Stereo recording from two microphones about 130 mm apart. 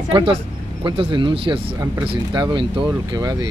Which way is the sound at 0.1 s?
40° right (ahead or behind).